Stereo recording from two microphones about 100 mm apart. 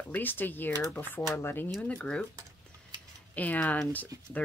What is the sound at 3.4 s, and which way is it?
Speech, 15° left (ahead or behind).